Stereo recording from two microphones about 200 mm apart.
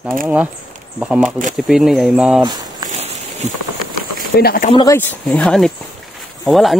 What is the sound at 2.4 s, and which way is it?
Walk, 20° right (ahead or behind).